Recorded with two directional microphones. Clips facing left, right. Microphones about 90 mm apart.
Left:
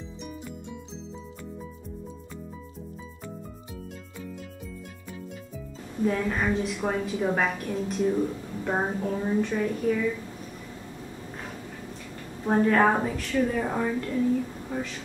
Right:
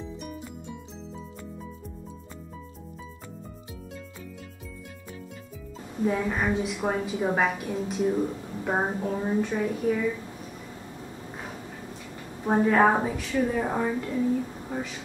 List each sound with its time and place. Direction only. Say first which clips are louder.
6.0 s a woman's voice: even; 10° right (ahead or behind)
8.6 s a woman's voice: even; 20° right (ahead or behind)
12.4 s a woman's voice: right 1 dB; 10° right (ahead or behind)
14.7 s a sound: left 1 dB; 5° right (ahead or behind)